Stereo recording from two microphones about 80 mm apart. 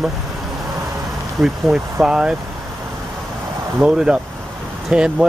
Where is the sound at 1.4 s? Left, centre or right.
Centre.